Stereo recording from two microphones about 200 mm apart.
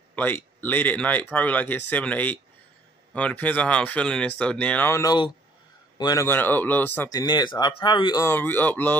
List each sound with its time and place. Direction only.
0.1 s speech: 10° left (ahead or behind)